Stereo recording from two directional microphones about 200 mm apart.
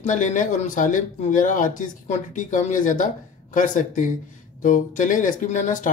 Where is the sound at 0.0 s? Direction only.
40° left (ahead or behind).